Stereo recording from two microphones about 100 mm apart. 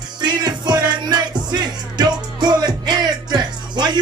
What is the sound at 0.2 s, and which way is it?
Music, 45° right (ahead or behind).